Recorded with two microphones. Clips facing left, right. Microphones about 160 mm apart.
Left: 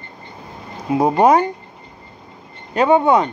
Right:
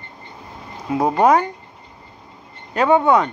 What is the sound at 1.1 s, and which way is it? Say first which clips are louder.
Speech: left 1 dB; 25° left (ahead or behind).